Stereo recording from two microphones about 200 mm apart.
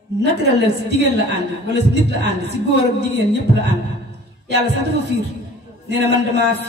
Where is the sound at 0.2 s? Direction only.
60° right (ahead or behind).